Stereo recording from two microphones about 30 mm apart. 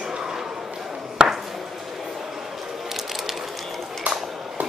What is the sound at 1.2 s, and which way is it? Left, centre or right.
Ping, right.